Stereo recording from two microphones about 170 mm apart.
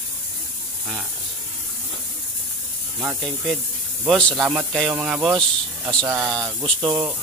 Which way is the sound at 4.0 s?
5° left (ahead or behind).